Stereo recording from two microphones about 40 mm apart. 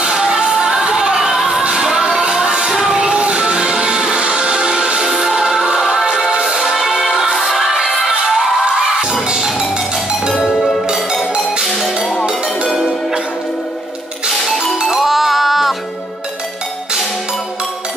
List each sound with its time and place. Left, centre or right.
0.0 s music: centre
7.7 s music: centre
10.5 s music: centre
14.4 s music: centre